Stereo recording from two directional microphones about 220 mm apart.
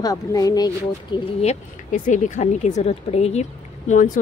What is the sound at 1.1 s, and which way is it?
Speech, 30° left (ahead or behind).